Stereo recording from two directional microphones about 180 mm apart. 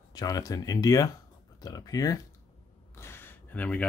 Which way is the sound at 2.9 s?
15° left (ahead or behind).